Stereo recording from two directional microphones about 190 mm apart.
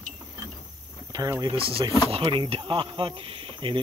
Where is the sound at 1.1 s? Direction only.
20° right (ahead or behind).